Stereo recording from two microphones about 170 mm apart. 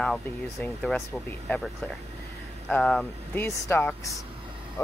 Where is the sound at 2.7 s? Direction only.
5° left (ahead or behind).